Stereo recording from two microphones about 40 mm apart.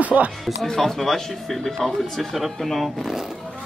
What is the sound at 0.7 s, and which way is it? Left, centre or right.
Speech, centre.